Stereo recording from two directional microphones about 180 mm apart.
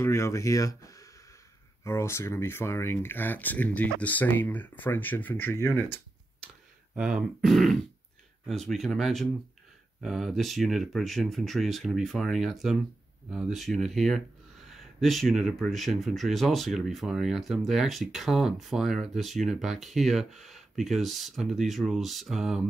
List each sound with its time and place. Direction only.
0.0 s speech: 15° left (ahead or behind)
7.0 s speech: 5° right (ahead or behind)